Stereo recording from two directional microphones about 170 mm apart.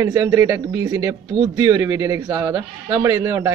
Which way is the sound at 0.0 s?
15° right (ahead or behind).